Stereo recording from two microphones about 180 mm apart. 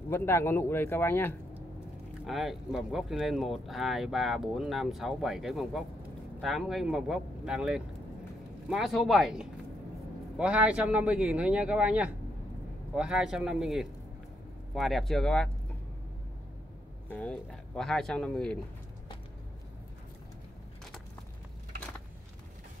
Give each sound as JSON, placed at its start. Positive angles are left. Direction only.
{"t": 0.1, "sound": "speech", "side_deg": 15}
{"t": 2.2, "sound": "a man's voice", "side_deg": 0}
{"t": 17.1, "sound": "speech", "side_deg": 5}